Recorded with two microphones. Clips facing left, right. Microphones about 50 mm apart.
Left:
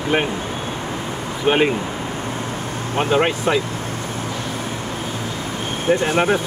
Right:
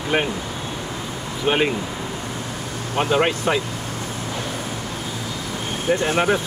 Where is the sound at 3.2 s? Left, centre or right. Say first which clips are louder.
Left 2 dB; centre.